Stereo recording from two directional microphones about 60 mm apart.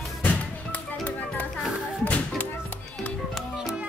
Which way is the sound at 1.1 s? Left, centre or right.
Left.